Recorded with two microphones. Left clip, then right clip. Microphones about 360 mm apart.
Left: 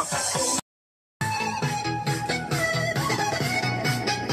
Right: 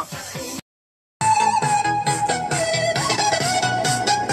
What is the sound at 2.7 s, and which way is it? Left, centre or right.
Music, right.